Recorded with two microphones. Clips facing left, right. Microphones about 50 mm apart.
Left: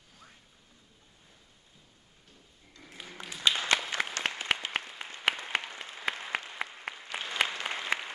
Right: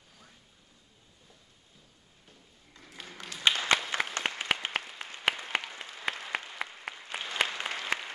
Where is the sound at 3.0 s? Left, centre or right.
Centre.